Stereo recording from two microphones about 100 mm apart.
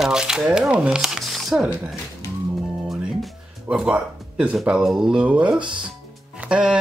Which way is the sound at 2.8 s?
5° right (ahead or behind).